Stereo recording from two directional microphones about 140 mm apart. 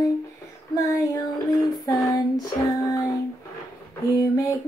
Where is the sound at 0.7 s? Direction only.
25° left (ahead or behind).